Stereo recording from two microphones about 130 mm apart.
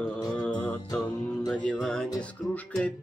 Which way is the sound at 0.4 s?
5° left (ahead or behind).